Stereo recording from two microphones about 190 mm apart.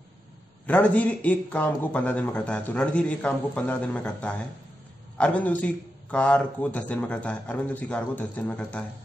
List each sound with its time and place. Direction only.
0.7 s a man's voice: 10° left (ahead or behind)